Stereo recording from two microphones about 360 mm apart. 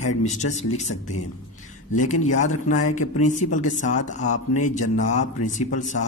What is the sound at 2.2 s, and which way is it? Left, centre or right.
Speech, centre.